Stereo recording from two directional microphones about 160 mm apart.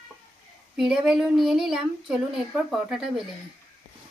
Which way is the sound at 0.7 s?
5° right (ahead or behind).